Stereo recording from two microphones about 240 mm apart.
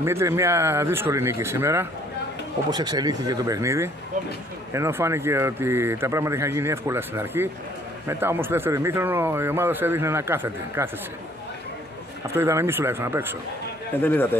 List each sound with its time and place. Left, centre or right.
0.0 s speech: centre
12.3 s speech: centre
13.9 s a man's voice: centre